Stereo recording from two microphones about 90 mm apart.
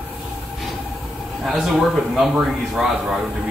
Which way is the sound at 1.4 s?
Centre (ahead or behind).